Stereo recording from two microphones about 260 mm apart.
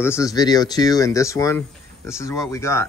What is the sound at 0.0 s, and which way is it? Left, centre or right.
Speech, centre.